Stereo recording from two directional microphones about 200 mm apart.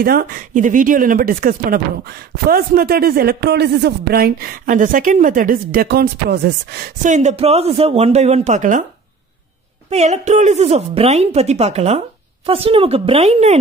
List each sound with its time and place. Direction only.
0.0 s speech: 45° right (ahead or behind)
9.8 s a woman's voice: 35° right (ahead or behind)